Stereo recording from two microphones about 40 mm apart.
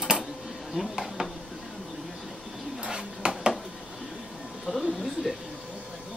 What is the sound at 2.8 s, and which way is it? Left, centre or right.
Dishes, right.